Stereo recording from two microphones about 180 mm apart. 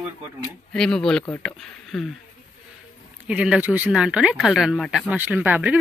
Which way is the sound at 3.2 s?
5° right (ahead or behind).